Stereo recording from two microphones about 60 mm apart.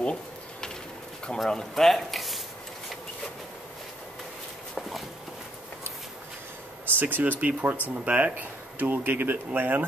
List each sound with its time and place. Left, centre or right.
0.0 s a sound: centre
1.5 s speech: centre
4.7 s walk: centre
6.9 s speech: right